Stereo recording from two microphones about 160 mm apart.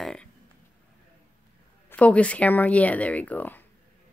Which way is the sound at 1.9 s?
10° left (ahead or behind).